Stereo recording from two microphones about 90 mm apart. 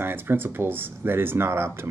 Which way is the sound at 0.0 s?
25° right (ahead or behind).